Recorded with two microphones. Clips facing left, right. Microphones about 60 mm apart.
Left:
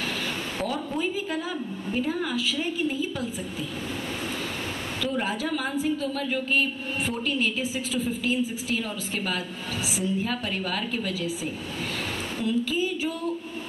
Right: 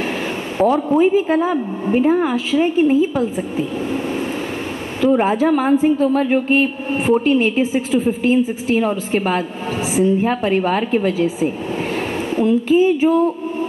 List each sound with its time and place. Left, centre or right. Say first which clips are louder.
0.6 s a woman's voice: right 16 dB; right
5.1 s a woman's voice: right 14 dB; right